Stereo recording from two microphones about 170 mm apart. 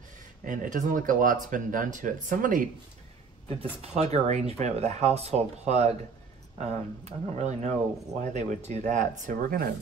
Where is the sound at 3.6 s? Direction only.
40° right (ahead or behind).